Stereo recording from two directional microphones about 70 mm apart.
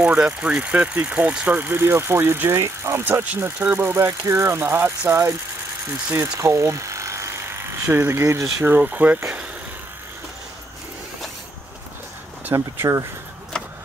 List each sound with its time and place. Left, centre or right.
0.0 s speech: centre
1.6 s speech: right
3.0 s speech: right
6.3 s speech: right
8.7 s speech: right
12.5 s speech: right